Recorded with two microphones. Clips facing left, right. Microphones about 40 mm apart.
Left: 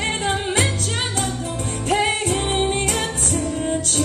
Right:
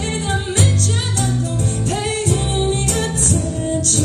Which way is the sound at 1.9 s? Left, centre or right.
Left.